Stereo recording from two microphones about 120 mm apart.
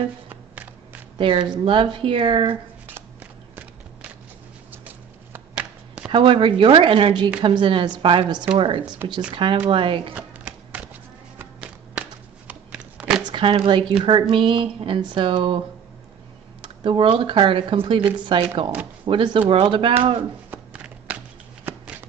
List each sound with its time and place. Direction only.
1.1 s speech: 45° right (ahead or behind)
4.8 s a sound: 10° right (ahead or behind)
6.0 s speech: 45° right (ahead or behind)
8.8 s speech: 10° right (ahead or behind)
9.3 s speech: 45° right (ahead or behind)
10.1 s a sound: 10° right (ahead or behind)
11.3 s music: 10° right (ahead or behind)
12.4 s a sound: 10° right (ahead or behind)
13.3 s speech: 40° right (ahead or behind)
16.6 s speech: 45° right (ahead or behind)
20.5 s a sound: 10° right (ahead or behind)
21.7 s shuffling cards: 20° right (ahead or behind)